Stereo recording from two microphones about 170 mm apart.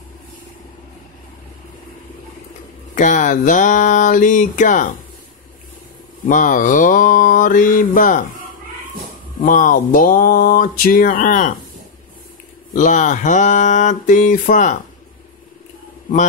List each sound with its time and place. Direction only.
2.9 s mantra: 45° left (ahead or behind)
6.2 s mantra: 50° left (ahead or behind)
9.4 s mantra: 55° left (ahead or behind)
12.7 s mantra: 45° left (ahead or behind)